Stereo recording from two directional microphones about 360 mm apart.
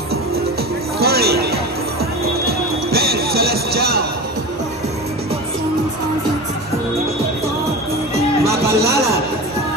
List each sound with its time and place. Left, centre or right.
0.9 s a sound: right
2.2 s music: right
8.5 s music: centre